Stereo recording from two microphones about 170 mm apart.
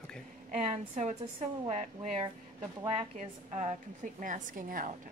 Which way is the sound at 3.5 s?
45° right (ahead or behind).